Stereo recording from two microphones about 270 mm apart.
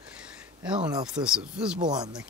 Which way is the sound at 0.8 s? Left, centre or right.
Centre.